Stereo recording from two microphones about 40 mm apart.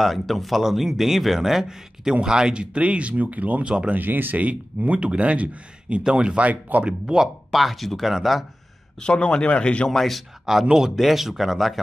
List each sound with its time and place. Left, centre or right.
0.0 s speech: centre; by 3.6 s right
3.6 s speech: right
3.9 s speech: right
4.9 s speech: right
6.4 s speech: right
6.9 s speech: centre
7.5 s speech: centre
9.0 s speech: left
9.8 s speech: centre
10.4 s speech: centre